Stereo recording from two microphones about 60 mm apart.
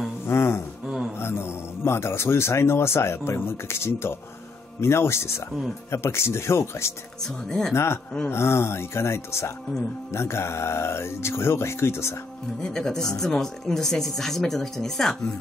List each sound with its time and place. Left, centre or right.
0.3 s a sound: left
1.2 s a man's voice: left
7.4 s speech: centre
7.7 s speech: left
12.5 s speech: centre